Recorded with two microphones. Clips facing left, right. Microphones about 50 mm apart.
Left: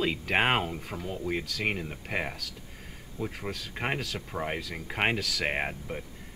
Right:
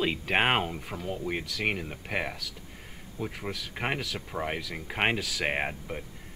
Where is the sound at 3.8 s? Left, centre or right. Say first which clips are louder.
Even; centre.